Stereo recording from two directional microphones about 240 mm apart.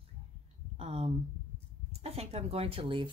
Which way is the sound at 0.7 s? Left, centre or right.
Right.